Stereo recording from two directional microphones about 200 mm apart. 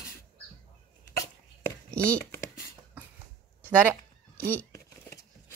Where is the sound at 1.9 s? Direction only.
5° left (ahead or behind).